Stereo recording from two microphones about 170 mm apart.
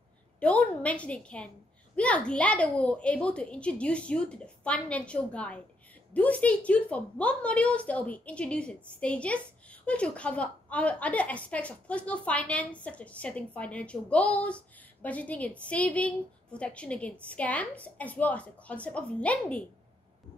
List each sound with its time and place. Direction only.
0.4 s a woman's voice: 5° left (ahead or behind)